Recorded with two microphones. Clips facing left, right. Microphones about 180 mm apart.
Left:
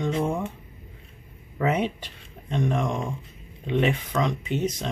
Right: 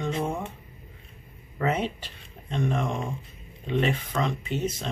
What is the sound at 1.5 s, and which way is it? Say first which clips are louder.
Speech: left 2 dB; 10° left (ahead or behind).